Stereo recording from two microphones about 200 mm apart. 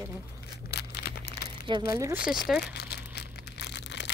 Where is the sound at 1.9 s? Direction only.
15° right (ahead or behind).